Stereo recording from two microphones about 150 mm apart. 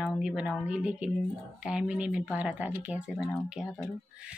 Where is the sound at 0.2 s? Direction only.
5° right (ahead or behind).